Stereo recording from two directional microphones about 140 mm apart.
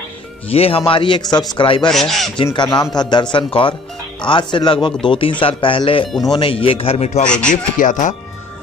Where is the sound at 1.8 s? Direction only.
Centre (ahead or behind).